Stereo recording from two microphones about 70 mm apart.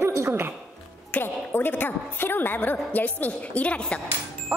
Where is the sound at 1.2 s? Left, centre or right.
Left.